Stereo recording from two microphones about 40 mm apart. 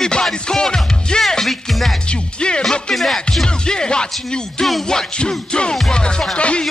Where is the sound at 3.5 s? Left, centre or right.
Centre.